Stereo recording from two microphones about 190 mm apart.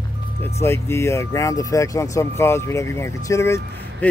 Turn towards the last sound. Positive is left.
turn(degrees=15)  # may be behind; listen again after turning